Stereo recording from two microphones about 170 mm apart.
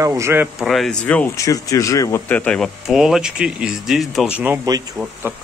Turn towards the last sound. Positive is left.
turn(degrees=-10)  # may be behind; listen again after turning